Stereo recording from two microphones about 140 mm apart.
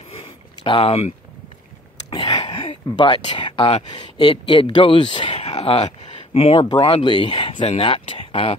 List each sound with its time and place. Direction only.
0.7 s speech: 40° left (ahead or behind)
2.0 s a sound: 30° left (ahead or behind)
3.9 s speech: 30° left (ahead or behind)